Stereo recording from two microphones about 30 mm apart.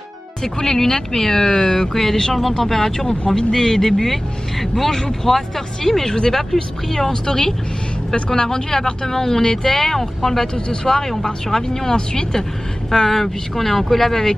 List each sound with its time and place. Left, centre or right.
0.4 s speech: centre
6.0 s speech: left
6.3 s speech: centre
10.5 s speech: left
11.0 s speech: centre
13.1 s speech: centre